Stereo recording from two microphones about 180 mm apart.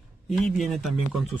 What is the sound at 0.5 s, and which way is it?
Speech, centre (ahead or behind).